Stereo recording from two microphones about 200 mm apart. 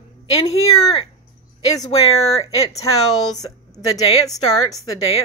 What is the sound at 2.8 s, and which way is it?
Speech, 20° left (ahead or behind).